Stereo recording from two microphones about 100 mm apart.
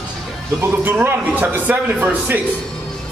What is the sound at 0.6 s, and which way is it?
A man's voice, 20° right (ahead or behind).